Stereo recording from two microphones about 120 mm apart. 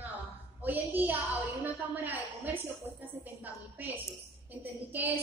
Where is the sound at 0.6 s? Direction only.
15° right (ahead or behind).